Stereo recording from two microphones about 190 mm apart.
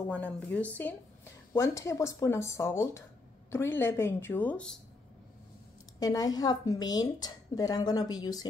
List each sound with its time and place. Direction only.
0.1 s speech: 5° left (ahead or behind)
5.9 s speech: 20° left (ahead or behind)